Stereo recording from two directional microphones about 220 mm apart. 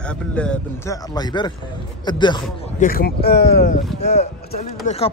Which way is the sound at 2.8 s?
45° left (ahead or behind).